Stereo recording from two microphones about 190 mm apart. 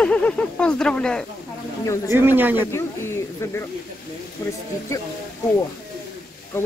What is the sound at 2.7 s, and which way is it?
Speech, 15° left (ahead or behind).